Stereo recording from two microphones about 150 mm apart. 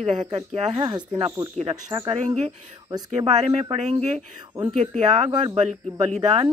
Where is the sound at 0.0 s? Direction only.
45° right (ahead or behind).